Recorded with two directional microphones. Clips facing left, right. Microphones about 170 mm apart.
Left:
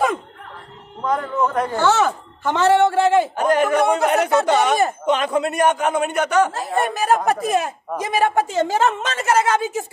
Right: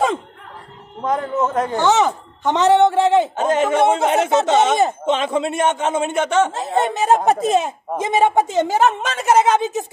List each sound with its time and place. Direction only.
1.0 s a man's voice: 20° right (ahead or behind)